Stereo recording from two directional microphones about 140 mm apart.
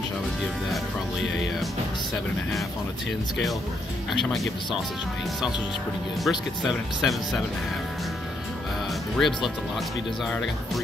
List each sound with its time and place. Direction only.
4.1 s speech: centre (ahead or behind)
6.2 s speech: centre (ahead or behind)
9.1 s speech: centre (ahead or behind)